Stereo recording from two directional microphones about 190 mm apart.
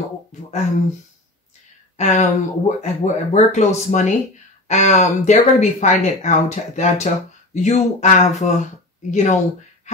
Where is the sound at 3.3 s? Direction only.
40° left (ahead or behind).